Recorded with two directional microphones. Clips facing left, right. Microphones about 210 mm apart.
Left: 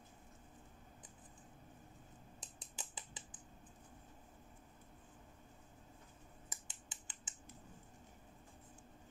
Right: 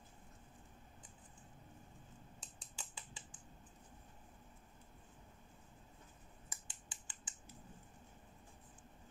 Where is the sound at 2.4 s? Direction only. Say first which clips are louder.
Left 2 dB; 20° left (ahead or behind).